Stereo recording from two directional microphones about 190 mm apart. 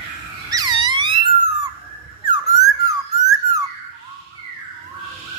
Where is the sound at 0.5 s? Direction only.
20° right (ahead or behind).